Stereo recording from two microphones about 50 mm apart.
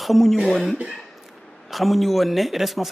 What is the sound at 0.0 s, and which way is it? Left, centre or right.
A man's voice, centre.